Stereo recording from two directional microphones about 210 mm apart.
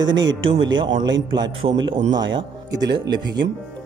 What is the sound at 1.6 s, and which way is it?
Speech, 30° right (ahead or behind).